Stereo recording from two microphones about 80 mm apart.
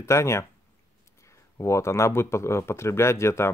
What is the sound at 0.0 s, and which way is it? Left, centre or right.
Speech, left.